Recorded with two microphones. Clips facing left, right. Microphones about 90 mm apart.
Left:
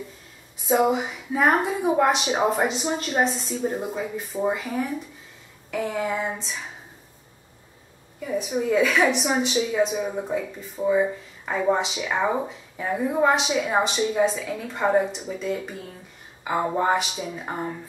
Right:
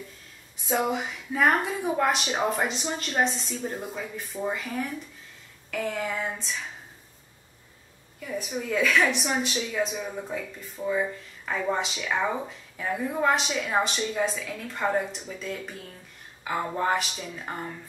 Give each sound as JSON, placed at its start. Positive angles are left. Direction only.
{"t": 0.7, "sound": "a woman's voice", "side_deg": 5}
{"t": 8.4, "sound": "a woman's voice", "side_deg": 5}